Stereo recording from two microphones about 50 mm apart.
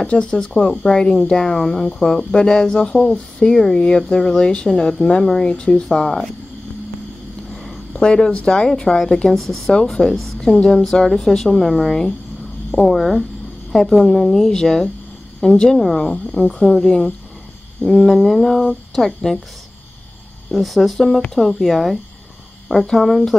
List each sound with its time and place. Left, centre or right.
0.0 s speech: centre
5.5 s speech: centre
7.5 s a sound: centre
7.9 s speech: centre
20.5 s speech: centre